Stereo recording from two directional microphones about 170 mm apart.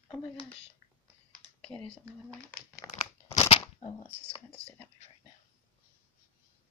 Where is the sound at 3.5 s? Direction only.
30° left (ahead or behind).